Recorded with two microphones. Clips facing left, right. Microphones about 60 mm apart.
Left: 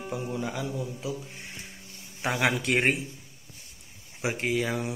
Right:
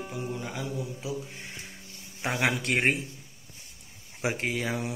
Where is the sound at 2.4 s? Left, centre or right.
Centre.